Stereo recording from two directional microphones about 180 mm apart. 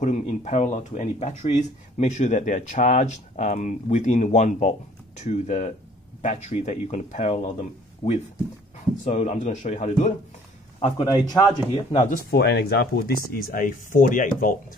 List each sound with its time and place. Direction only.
0.0 s speech: 40° left (ahead or behind)
8.0 s speech: 30° left (ahead or behind)
9.0 s speech: 40° left (ahead or behind)
10.8 s speech: 25° left (ahead or behind)
12.3 s speech: 65° left (ahead or behind); by 14.5 s 50° left (ahead or behind)